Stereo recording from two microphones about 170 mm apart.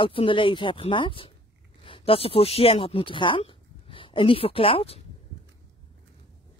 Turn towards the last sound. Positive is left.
turn(degrees=35)  # may be behind; listen again after turning